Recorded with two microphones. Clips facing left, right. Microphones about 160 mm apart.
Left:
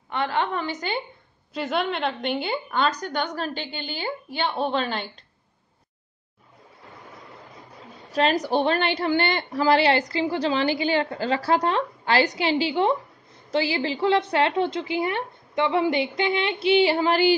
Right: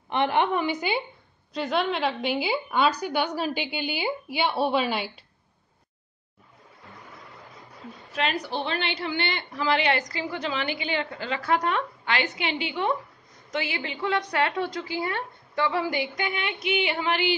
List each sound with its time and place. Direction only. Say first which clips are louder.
0.1 s a woman's voice: right 2 dB; 20° right (ahead or behind)
1.5 s a woman's voice: even; centre (ahead or behind)
8.1 s a woman's voice: left 7 dB; 35° left (ahead or behind)